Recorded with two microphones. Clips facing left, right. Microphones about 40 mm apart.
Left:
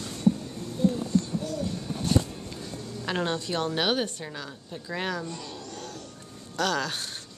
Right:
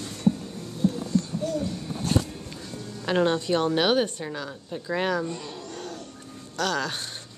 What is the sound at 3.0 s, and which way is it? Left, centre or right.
Speech, centre.